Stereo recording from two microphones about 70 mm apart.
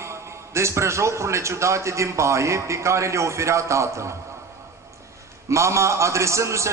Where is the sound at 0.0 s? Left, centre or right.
Right.